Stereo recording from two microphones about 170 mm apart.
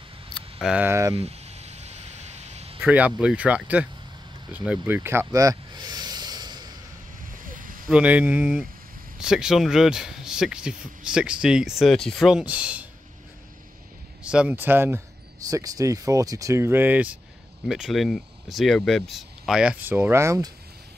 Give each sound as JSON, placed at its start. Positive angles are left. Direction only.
{"t": 0.3, "sound": "a sound", "side_deg": 0}
{"t": 0.8, "sound": "speech", "side_deg": -15}
{"t": 1.1, "sound": "a sound", "side_deg": -40}
{"t": 2.8, "sound": "speech", "side_deg": -10}
{"t": 4.5, "sound": "snake", "side_deg": -10}
{"t": 7.2, "sound": "vehicle", "side_deg": -55}
{"t": 7.9, "sound": "speech", "side_deg": -10}
{"t": 14.2, "sound": "speech", "side_deg": -5}